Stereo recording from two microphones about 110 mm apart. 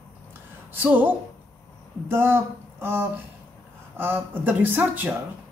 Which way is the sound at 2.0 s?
20° right (ahead or behind).